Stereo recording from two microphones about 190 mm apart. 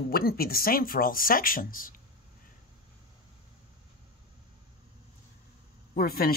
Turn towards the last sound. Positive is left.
turn(degrees=50)  # may be behind; listen again after turning